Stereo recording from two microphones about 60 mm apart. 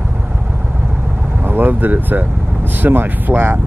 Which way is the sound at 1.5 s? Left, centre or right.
Right.